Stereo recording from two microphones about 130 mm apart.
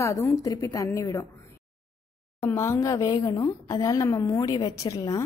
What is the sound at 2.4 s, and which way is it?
A woman's voice, 20° left (ahead or behind).